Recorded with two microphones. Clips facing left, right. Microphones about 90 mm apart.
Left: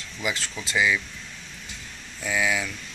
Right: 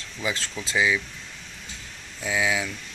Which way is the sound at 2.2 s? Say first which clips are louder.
Even; 20° right (ahead or behind).